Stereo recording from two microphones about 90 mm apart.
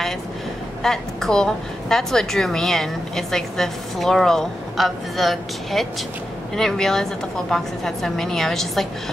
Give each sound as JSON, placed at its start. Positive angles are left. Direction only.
{"t": 0.8, "sound": "a woman's voice", "side_deg": 5}